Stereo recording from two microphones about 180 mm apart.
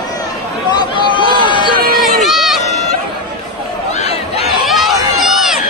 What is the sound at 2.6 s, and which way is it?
Run, 40° left (ahead or behind).